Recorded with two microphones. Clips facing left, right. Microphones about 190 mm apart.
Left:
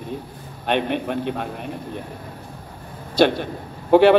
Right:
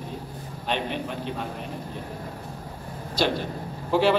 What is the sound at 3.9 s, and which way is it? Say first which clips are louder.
Speech: left 8 dB; 60° left (ahead or behind).